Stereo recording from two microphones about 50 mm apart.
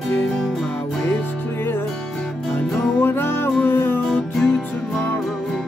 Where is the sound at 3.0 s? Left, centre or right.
Left.